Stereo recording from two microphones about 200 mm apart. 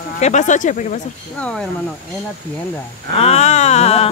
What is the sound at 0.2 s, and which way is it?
Speech, 35° left (ahead or behind).